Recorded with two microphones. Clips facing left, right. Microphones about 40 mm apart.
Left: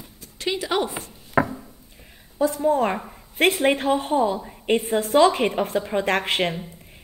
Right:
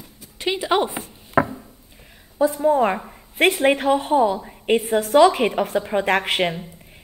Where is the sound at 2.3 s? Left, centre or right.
Centre.